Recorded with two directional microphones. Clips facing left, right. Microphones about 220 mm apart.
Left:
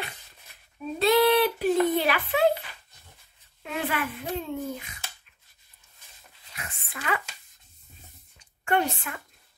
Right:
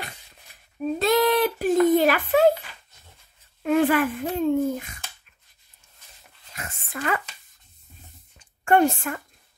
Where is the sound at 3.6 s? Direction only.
50° right (ahead or behind).